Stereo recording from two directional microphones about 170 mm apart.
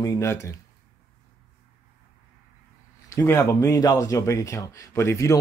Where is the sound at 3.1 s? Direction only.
15° left (ahead or behind).